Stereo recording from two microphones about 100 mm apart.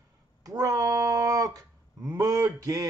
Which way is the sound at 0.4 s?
40° right (ahead or behind).